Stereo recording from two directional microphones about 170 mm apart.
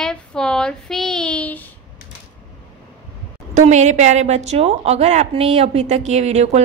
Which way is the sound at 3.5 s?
45° right (ahead or behind).